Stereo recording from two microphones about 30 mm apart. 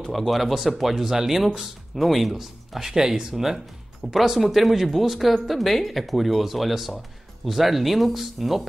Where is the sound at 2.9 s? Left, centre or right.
Right.